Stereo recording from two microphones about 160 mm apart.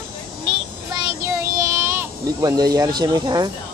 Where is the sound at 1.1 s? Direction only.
20° right (ahead or behind).